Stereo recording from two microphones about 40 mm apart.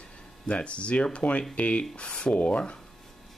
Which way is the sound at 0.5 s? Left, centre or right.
Left.